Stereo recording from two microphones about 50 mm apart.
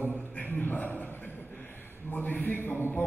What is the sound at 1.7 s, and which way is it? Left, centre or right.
A man's voice, left.